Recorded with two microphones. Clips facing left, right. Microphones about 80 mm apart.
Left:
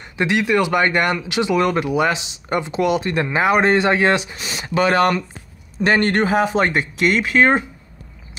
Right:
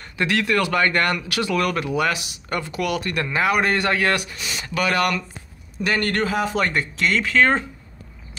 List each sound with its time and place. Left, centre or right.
0.2 s speech: centre